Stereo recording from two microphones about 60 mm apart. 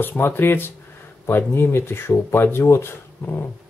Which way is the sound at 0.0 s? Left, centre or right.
Left.